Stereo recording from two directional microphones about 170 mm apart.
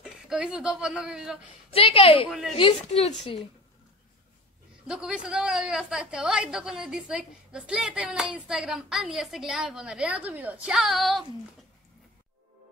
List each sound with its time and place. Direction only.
0.0 s speech: 5° right (ahead or behind)
1.7 s a woman's voice: 35° left (ahead or behind)
2.2 s a woman's voice: centre (ahead or behind)
2.5 s a woman's voice: 35° left (ahead or behind)
4.8 s a woman's voice: 5° right (ahead or behind)